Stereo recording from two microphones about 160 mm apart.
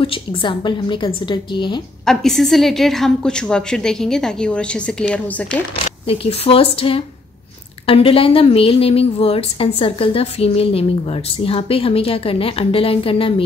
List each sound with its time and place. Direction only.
0.0 s a woman's voice: 30° left (ahead or behind)
2.0 s a woman's voice: centre (ahead or behind)
6.0 s a woman's voice: 35° left (ahead or behind)